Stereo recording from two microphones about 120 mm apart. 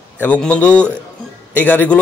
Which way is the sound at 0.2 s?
10° left (ahead or behind).